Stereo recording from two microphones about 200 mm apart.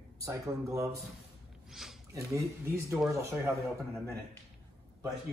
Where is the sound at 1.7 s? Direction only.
Centre (ahead or behind).